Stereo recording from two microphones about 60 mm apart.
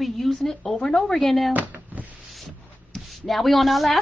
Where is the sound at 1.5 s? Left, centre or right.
Right.